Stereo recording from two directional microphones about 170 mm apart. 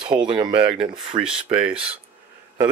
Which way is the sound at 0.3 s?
25° right (ahead or behind).